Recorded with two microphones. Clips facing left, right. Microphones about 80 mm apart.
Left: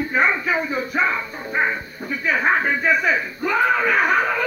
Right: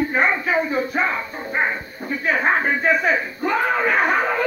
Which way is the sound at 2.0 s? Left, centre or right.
Right.